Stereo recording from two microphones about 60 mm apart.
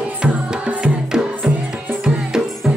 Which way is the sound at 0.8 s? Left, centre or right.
Centre.